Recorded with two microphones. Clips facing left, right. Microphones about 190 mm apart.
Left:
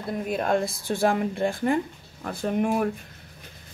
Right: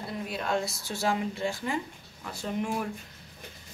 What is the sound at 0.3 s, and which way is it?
Speech, 50° left (ahead or behind).